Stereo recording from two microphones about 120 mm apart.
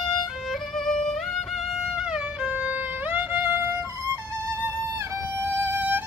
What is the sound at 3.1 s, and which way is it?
Music, 15° right (ahead or behind).